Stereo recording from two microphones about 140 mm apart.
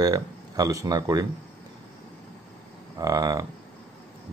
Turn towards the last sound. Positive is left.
turn(degrees=-25)  # may be behind; listen again after turning